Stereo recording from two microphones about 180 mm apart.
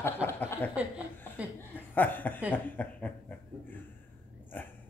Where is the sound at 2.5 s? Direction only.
10° left (ahead or behind).